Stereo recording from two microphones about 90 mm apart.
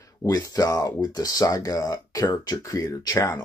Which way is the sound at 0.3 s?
40° left (ahead or behind).